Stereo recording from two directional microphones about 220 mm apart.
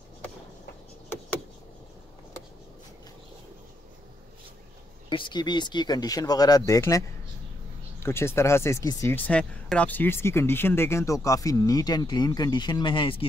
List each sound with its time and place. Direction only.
5.1 s speech: 20° left (ahead or behind)